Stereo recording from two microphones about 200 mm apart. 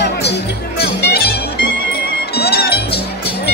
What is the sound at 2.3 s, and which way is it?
Music, 55° left (ahead or behind).